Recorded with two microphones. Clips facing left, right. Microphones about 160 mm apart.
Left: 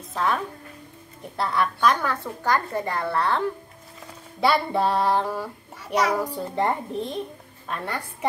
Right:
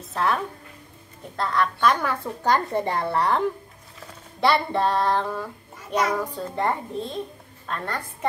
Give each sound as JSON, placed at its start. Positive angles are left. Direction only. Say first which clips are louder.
{"t": 0.1, "sound": "a woman's voice", "louder": "right 1 dB", "side_deg": 0}
{"t": 2.4, "sound": "a woman's voice", "louder": "right 2 dB", "side_deg": -20}
{"t": 4.4, "sound": "child singing", "louder": "even", "side_deg": 5}